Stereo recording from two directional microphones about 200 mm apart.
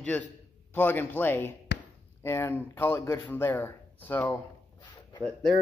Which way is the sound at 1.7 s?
60° left (ahead or behind).